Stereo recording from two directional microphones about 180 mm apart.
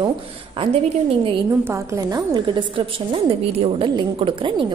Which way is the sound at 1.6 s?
15° right (ahead or behind).